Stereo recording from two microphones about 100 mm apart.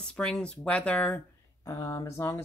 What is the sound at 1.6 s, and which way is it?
Speech, 30° left (ahead or behind).